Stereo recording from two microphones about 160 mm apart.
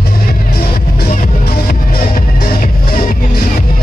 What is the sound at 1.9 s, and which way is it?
Music, 65° left (ahead or behind).